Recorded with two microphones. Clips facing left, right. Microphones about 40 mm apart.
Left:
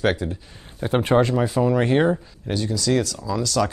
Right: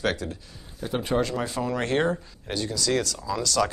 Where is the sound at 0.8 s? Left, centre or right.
Left.